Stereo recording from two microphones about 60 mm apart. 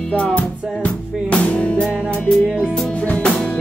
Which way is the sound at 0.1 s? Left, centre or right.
Left.